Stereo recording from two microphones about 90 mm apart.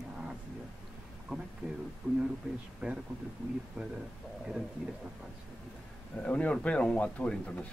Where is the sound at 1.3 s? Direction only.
10° right (ahead or behind).